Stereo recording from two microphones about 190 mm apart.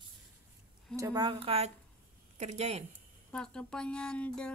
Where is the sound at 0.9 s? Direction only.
20° right (ahead or behind); by 2.8 s 35° right (ahead or behind).